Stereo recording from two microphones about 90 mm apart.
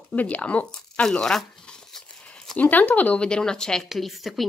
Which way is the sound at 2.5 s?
15° left (ahead or behind).